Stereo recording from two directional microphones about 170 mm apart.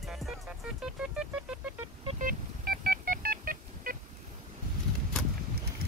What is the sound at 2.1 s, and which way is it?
Telephone dialing, 55° right (ahead or behind).